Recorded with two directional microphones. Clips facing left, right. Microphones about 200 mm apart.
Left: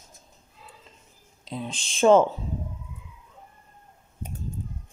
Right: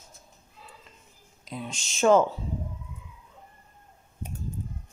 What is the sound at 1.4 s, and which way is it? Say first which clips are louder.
Speech: left 3 dB; 30° left (ahead or behind).